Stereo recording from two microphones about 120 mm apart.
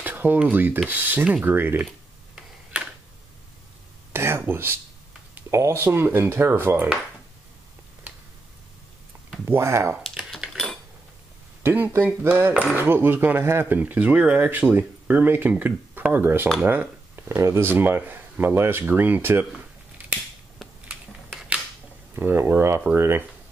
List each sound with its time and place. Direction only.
0.0 s speech: 15° right (ahead or behind)
4.1 s a sound: 20° right (ahead or behind)
5.3 s speech: 20° right (ahead or behind)
9.5 s speech: 20° right (ahead or behind)
10.0 s typewriter: 5° left (ahead or behind)
11.6 s speech: 20° right (ahead or behind)
20.5 s a sound: centre (ahead or behind)
22.1 s speech: 20° right (ahead or behind)